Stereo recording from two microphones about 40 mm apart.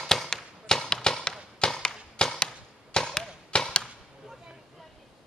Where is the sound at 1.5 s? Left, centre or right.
Left.